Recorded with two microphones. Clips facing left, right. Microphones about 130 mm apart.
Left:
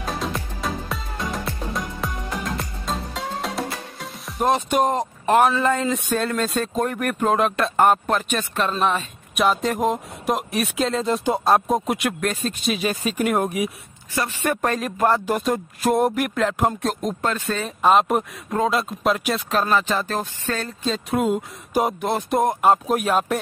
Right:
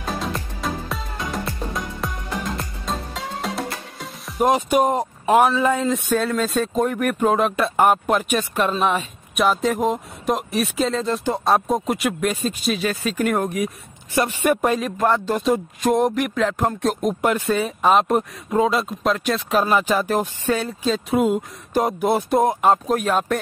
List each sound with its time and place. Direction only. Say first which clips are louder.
0.0 s music: even; centre (ahead or behind)
4.5 s speech: right 1 dB; 10° right (ahead or behind)
11.1 s speech: left 1 dB; 15° left (ahead or behind)
11.4 s speech: right 1 dB; centre (ahead or behind)
12.7 s speech: right 1 dB; 15° left (ahead or behind)
14.1 s speech: right 5 dB; 15° right (ahead or behind)
14.8 s speech: even; centre (ahead or behind)
17.2 s speech: right 5 dB; 15° right (ahead or behind)
17.6 s speech: left 2 dB; centre (ahead or behind)
19.5 s speech: right 2 dB; 10° right (ahead or behind)